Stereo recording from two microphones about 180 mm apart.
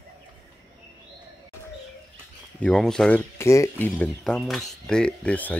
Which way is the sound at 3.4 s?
15° left (ahead or behind).